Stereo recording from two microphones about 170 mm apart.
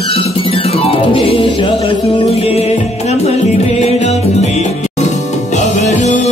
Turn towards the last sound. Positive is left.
turn(degrees=45)  # may be behind; listen again after turning